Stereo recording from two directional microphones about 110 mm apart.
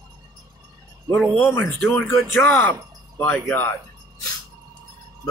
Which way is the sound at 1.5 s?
20° left (ahead or behind).